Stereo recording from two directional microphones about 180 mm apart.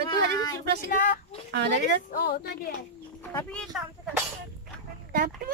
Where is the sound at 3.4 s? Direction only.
5° left (ahead or behind).